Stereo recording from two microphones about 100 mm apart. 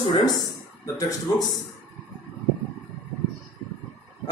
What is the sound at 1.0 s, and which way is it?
Speech, 35° left (ahead or behind).